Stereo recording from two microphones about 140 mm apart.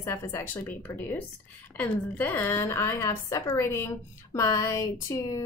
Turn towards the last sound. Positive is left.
turn(degrees=25)  # may be behind; listen again after turning